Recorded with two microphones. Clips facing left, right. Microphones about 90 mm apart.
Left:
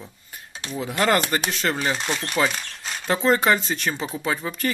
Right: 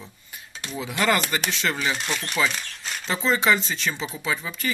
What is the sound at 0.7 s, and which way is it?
Speech, 45° left (ahead or behind).